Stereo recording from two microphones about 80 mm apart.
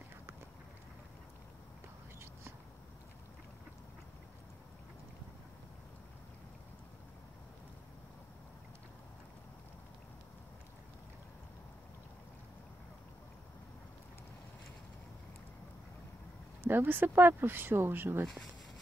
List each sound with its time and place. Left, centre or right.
16.6 s speech: right